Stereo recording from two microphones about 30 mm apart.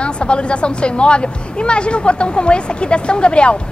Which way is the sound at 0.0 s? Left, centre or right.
Left.